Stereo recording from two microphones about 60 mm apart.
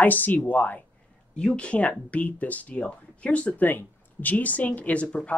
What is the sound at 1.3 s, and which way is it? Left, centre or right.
Speech, centre.